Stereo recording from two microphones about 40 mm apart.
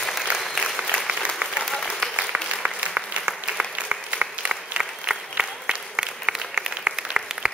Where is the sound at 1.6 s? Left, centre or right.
Centre.